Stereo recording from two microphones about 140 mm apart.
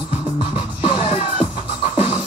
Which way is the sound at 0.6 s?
35° left (ahead or behind).